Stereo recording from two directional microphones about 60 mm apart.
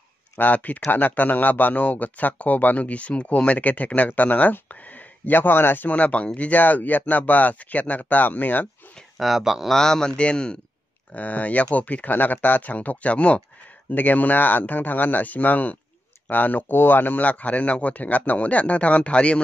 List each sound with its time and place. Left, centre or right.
0.4 s speech: left
5.9 s speech: left
9.2 s speech: centre
9.8 s a man's voice: centre